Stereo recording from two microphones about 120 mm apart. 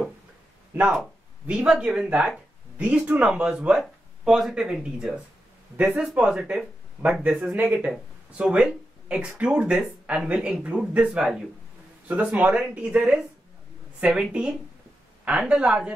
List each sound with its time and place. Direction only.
0.7 s speech: 10° right (ahead or behind)